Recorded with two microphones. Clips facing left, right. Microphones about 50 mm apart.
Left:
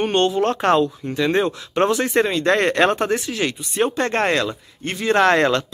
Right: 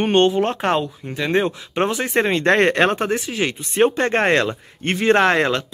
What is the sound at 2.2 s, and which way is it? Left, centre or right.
Speech, right.